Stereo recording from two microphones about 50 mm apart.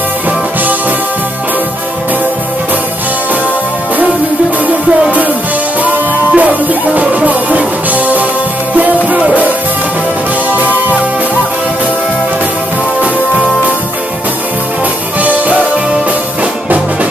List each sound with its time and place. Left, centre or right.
6.3 s music: right